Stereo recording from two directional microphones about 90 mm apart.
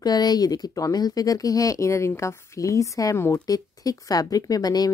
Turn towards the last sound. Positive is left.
turn(degrees=45)  # may be behind; listen again after turning